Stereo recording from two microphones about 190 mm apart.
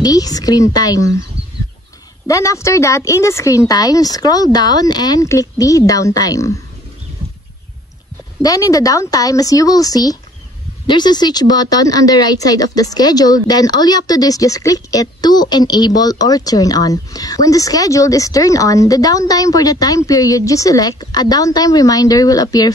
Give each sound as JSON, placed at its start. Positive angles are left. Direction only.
{"t": 0.0, "sound": "speech", "side_deg": 20}
{"t": 2.2, "sound": "a man's voice", "side_deg": 15}
{"t": 8.4, "sound": "speech", "side_deg": 20}